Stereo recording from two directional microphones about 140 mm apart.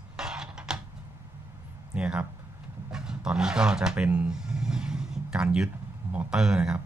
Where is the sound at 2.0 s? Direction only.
10° right (ahead or behind).